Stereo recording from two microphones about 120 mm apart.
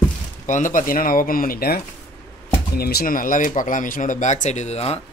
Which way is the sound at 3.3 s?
90° left.